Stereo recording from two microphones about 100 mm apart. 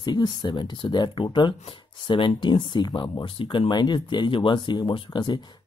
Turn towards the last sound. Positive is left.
turn(degrees=50)  # may be behind; listen again after turning